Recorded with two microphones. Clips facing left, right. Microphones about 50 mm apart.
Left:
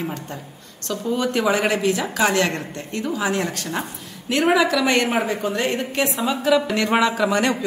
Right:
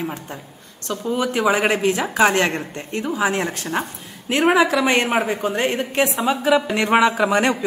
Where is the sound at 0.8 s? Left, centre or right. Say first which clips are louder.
Even; centre.